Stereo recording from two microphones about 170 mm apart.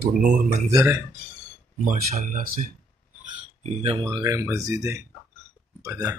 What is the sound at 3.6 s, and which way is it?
Speech, 35° right (ahead or behind).